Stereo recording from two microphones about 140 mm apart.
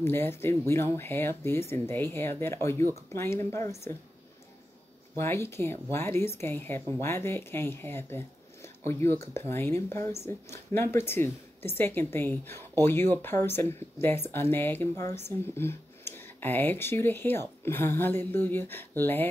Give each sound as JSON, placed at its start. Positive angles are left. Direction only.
{"t": 0.0, "sound": "speech", "side_deg": 15}
{"t": 5.1, "sound": "speech", "side_deg": 20}